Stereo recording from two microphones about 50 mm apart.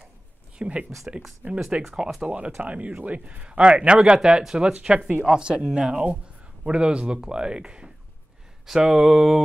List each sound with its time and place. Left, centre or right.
0.6 s a man's voice: right
1.8 s speech: centre
2.2 s a man's voice: right; by 9.4 s centre